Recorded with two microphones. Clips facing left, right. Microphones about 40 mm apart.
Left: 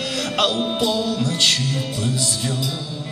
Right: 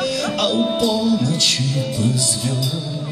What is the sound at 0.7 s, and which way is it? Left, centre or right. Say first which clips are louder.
Mantra: right 2 dB; left.